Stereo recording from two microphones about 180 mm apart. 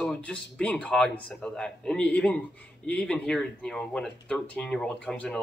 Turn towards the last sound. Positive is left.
turn(degrees=5)  # may be behind; listen again after turning